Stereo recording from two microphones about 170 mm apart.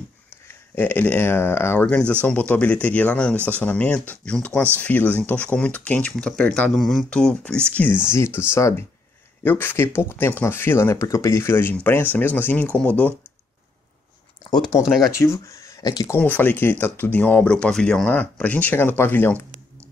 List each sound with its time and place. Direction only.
0.7 s speech: 10° left (ahead or behind)
14.5 s speech: 25° left (ahead or behind)
14.8 s speech: centre (ahead or behind)
15.0 s speech: 15° left (ahead or behind)
16.2 s speech: 10° left (ahead or behind)